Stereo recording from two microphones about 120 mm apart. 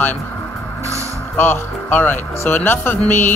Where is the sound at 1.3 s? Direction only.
15° left (ahead or behind).